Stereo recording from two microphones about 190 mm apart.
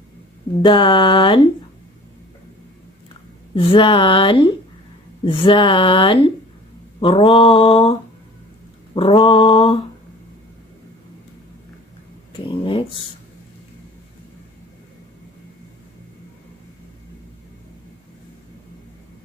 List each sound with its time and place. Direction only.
0.7 s speech: 25° left (ahead or behind)
3.5 s speech: 30° left (ahead or behind)